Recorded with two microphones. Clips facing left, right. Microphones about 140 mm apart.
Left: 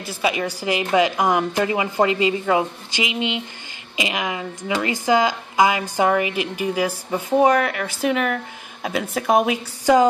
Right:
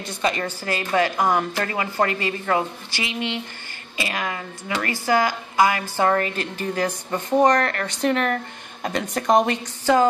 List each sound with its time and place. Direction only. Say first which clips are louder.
0.0 s a woman's voice: left 2 dB; 5° left (ahead or behind)